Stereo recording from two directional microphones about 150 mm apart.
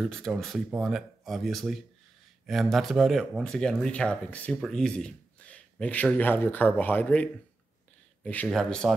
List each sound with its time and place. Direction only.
0.0 s speech: centre (ahead or behind)